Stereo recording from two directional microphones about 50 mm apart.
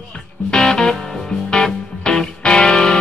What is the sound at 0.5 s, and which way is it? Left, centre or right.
Music, centre.